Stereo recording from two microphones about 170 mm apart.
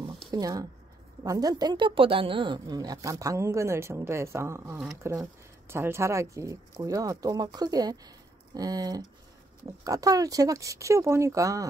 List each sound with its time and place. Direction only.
0.3 s a woman's voice: 20° right (ahead or behind)